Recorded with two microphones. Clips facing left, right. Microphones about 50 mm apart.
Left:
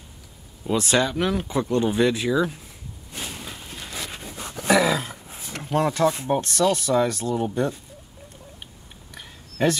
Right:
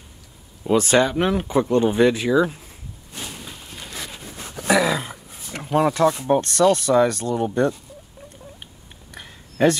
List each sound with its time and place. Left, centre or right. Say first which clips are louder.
0.7 s speech: right 4 dB; right
2.3 s speech: right 4 dB; centre
4.6 s roaring cats: right 1 dB; centre
6.4 s speech: right 4 dB; centre
9.1 s a sound: right 2 dB; centre